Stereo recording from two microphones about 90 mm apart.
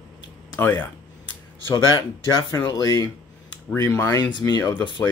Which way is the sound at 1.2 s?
50° left (ahead or behind).